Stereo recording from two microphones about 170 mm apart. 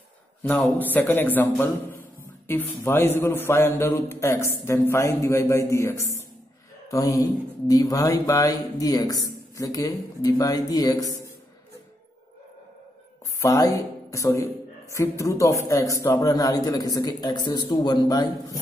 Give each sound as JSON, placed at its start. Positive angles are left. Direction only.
{"t": 0.4, "sound": "a man's voice", "side_deg": 10}
{"t": 13.4, "sound": "a man's voice", "side_deg": 20}